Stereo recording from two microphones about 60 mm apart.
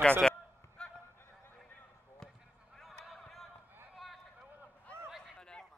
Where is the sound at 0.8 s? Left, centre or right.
Centre.